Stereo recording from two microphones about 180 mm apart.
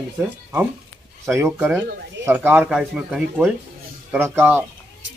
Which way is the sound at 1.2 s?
15° right (ahead or behind).